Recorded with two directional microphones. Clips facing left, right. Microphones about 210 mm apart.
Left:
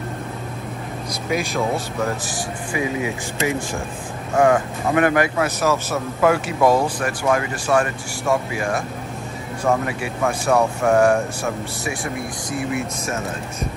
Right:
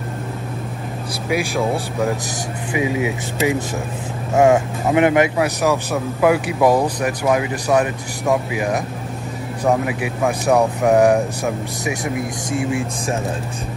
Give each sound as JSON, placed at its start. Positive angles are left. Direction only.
{"t": 1.3, "sound": "a man's voice", "side_deg": -10}
{"t": 2.7, "sound": "a man's voice", "side_deg": -15}
{"t": 12.5, "sound": "speech", "side_deg": -30}